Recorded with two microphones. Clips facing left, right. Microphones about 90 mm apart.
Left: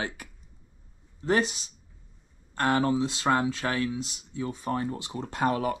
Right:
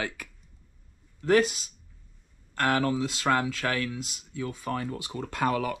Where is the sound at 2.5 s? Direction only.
20° left (ahead or behind).